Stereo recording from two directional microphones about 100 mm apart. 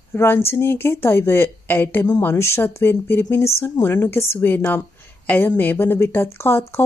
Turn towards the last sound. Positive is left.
turn(degrees=25)  # may be behind; listen again after turning